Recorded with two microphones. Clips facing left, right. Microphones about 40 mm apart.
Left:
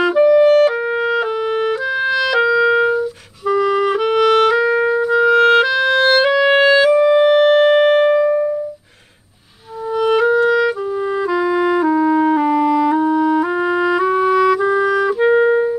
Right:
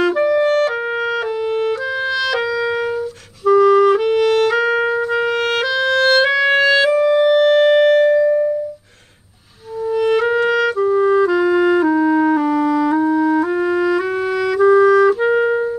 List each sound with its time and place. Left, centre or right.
0.0 s clarinet: centre
0.3 s music: centre
1.5 s clarinet: centre
2.3 s music: centre
3.4 s clarinet: centre
4.6 s music: centre; by 8.5 s left
9.9 s music: centre
10.4 s clarinet: centre
10.8 s music: centre